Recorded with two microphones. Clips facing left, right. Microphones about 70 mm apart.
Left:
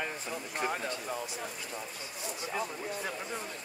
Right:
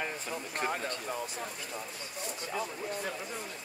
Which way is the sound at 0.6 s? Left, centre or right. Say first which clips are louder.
Even; right.